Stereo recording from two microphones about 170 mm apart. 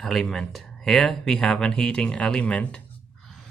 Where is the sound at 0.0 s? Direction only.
Centre (ahead or behind).